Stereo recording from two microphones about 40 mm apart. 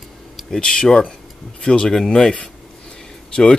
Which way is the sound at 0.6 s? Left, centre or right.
Left.